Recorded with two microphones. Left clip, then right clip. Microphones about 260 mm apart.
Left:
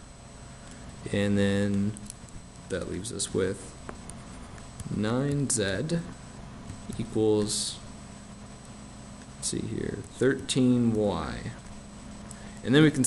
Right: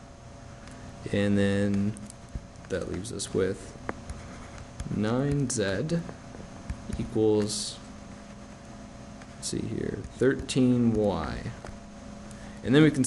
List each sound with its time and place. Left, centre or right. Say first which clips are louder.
1.0 s speech: right 1 dB; centre
2.7 s speech: right 1 dB; centre
5.0 s speech: right 1 dB; centre
7.0 s speech: right 1 dB; centre
9.4 s speech: even; centre
12.6 s speech: even; centre